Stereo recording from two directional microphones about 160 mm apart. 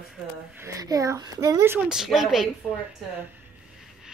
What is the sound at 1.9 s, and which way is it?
Child singing, centre (ahead or behind).